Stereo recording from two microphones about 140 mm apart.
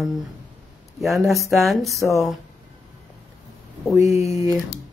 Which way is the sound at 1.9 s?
20° left (ahead or behind).